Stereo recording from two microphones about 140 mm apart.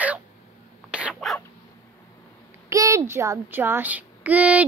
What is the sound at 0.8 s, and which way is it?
Rodents, 5° right (ahead or behind).